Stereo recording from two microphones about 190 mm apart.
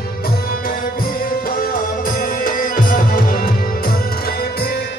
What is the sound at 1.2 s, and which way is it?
Music, 50° left (ahead or behind).